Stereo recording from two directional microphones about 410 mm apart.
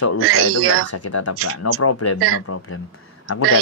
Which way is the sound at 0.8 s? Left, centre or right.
Left.